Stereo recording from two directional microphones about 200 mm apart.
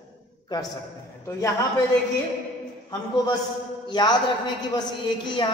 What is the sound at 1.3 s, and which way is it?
Speech, 15° left (ahead or behind).